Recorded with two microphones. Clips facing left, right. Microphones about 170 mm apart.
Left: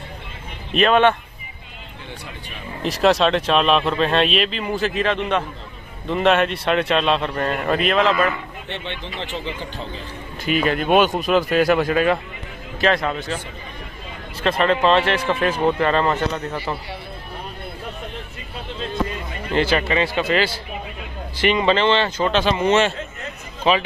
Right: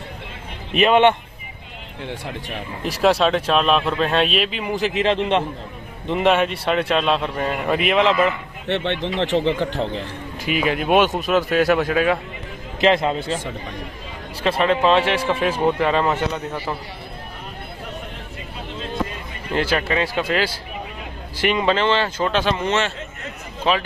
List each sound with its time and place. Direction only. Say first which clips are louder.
0.7 s speech: right 1 dB; 15° right (ahead or behind)
2.8 s speech: left 1 dB; 5° right (ahead or behind); by 5.4 s 30° right (ahead or behind)
6.0 s speech: even; 10° right (ahead or behind)
8.6 s speech: right 11 dB; 70° right (ahead or behind)
10.4 s speech: left 1 dB; 10° right (ahead or behind)
12.8 s speech: right 3 dB; 25° right (ahead or behind)
14.4 s speech: even; 10° right (ahead or behind)
19.5 s speech: left 1 dB; 5° right (ahead or behind)
22.6 s a man's voice: left 4 dB; 15° left (ahead or behind)
23.6 s speech: left 2 dB; 5° left (ahead or behind)